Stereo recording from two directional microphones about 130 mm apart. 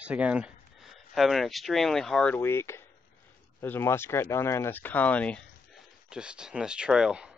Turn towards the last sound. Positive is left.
turn(degrees=-5)  # may be behind; listen again after turning